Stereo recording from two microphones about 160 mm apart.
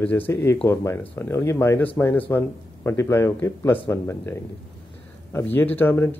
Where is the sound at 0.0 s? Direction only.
10° left (ahead or behind).